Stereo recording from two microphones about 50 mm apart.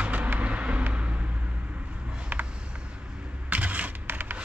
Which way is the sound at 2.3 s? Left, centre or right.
Right.